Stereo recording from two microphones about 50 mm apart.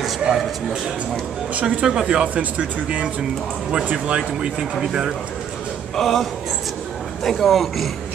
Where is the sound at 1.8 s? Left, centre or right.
Centre.